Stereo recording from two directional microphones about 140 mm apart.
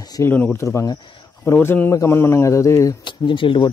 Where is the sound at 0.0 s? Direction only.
25° left (ahead or behind).